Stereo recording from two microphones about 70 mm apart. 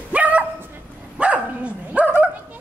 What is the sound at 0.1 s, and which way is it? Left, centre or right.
Dog, right.